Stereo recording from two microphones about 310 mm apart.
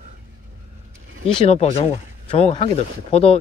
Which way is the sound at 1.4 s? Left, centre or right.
Centre.